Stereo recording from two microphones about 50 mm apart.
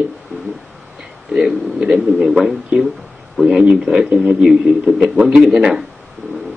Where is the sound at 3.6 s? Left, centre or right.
Centre.